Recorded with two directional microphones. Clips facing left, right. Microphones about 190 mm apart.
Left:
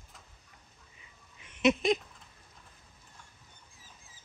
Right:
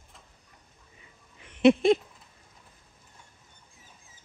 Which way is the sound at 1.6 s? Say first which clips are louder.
Right 7 dB; 20° left (ahead or behind).